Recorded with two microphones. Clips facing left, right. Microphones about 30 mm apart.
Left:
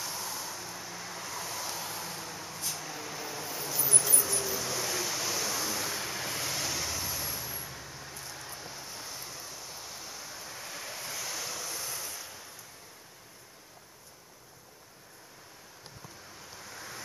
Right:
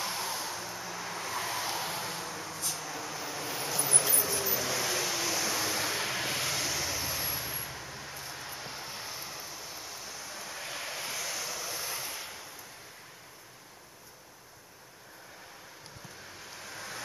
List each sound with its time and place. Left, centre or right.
0.0 s vehicle: right
0.6 s vehicle: centre
1.3 s vehicle: right; by 2.5 s centre
2.5 s a sound: centre
3.4 s a sound: right
3.7 s vehicle: right
5.7 s vehicle: right
6.4 s vehicle: centre
7.1 s vehicle: right; by 10.3 s centre
10.3 s vehicle: centre
10.7 s vehicle: right
11.1 s waves: centre; by 12.4 s right
16.5 s vehicle: right